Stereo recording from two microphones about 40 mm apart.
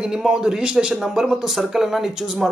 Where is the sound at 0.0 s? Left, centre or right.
Centre.